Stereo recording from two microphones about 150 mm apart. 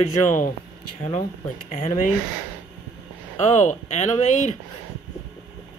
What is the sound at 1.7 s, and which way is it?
Speech, 55° left (ahead or behind).